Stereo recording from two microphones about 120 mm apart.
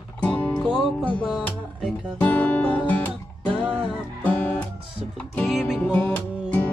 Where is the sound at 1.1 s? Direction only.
10° left (ahead or behind).